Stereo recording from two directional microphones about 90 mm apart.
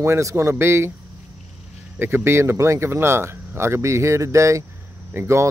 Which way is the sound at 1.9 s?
25° right (ahead or behind).